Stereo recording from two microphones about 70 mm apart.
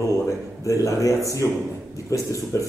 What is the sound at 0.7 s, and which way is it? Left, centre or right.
A man's voice, left.